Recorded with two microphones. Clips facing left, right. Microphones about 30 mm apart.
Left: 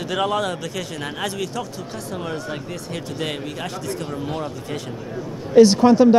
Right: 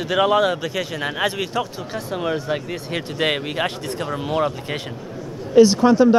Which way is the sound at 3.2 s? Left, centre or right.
Right.